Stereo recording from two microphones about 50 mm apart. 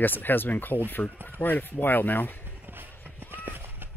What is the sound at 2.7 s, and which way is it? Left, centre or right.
Run, right.